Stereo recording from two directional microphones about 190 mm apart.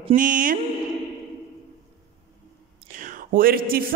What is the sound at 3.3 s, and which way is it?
Speech, 50° right (ahead or behind).